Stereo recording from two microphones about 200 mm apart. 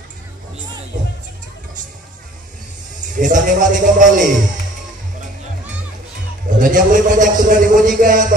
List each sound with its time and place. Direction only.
3.2 s a man's voice: 40° right (ahead or behind)
6.6 s a man's voice: 40° right (ahead or behind)